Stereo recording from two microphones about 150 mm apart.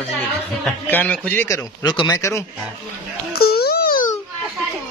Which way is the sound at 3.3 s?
90° left.